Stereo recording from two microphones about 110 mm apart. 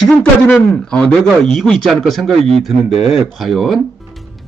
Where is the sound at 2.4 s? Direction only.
65° right (ahead or behind).